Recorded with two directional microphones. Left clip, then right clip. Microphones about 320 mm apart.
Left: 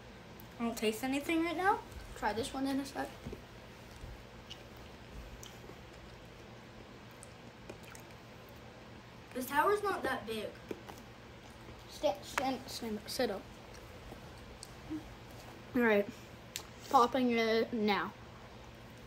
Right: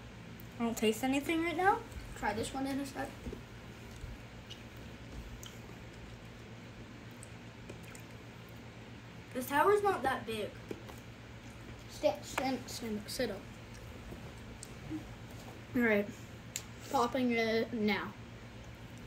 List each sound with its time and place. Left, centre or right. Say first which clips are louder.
0.6 s a child's voice: right 2 dB; centre
9.4 s speech: right 2 dB; centre
12.0 s a child's voice: right 1 dB; centre
15.7 s a woman's voice: left 1 dB; centre